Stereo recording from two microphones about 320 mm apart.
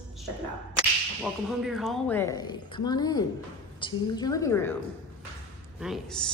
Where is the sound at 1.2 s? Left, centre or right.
Centre.